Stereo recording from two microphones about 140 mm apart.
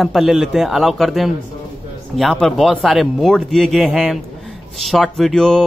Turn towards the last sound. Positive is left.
turn(degrees=0)  # may be behind; listen again after turning